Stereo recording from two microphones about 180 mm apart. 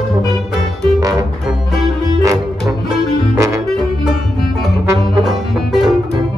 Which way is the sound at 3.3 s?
20° right (ahead or behind).